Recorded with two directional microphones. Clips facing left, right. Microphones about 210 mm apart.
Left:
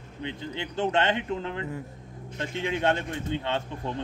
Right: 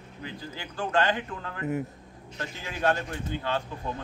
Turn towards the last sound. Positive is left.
turn(degrees=25)  # may be behind; listen again after turning